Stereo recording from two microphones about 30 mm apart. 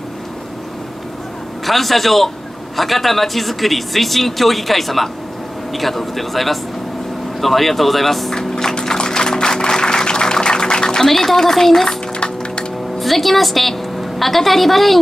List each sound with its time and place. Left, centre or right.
1.7 s a man's voice: centre
8.4 s a sound: centre
8.8 s music: left
11.1 s speech: centre
11.9 s a sound: left
13.0 s a woman's voice: centre